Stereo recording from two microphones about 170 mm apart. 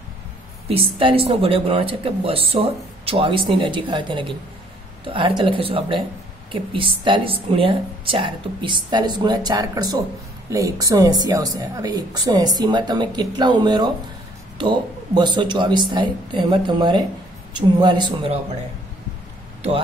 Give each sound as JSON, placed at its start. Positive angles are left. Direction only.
{"t": 0.7, "sound": "a woman's voice", "side_deg": -30}